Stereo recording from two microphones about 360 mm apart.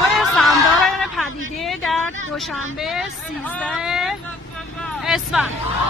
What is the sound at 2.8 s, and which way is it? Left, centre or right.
Speech, centre.